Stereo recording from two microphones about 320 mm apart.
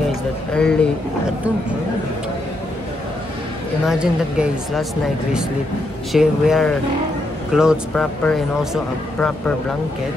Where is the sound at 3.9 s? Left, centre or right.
Centre.